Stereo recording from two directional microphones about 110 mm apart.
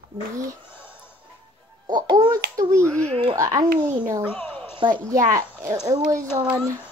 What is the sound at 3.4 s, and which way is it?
Speech, 30° right (ahead or behind).